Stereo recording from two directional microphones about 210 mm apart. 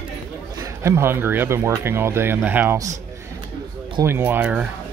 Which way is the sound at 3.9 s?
10° right (ahead or behind).